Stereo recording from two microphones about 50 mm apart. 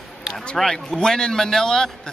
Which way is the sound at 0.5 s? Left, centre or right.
Centre.